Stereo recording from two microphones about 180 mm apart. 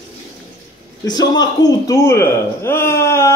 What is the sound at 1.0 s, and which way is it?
Speech, 20° left (ahead or behind).